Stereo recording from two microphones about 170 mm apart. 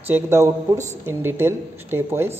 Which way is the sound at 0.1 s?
15° right (ahead or behind).